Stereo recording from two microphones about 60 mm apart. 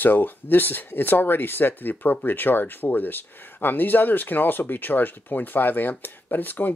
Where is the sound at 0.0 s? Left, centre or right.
Left.